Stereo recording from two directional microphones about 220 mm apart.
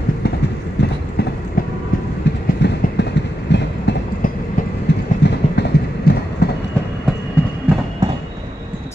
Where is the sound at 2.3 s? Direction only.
50° left (ahead or behind).